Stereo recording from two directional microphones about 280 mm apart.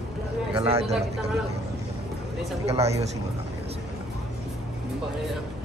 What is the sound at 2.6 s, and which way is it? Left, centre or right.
Speech, right.